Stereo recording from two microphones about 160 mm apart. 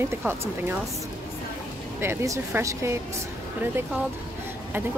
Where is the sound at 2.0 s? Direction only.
15° right (ahead or behind).